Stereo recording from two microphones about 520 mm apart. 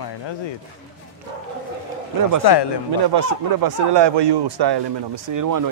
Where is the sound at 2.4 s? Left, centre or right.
Left.